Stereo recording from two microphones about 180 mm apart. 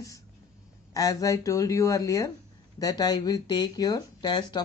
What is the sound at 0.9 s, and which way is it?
Speech, 20° left (ahead or behind).